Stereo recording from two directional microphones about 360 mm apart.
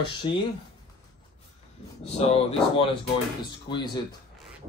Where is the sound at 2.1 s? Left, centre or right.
Centre.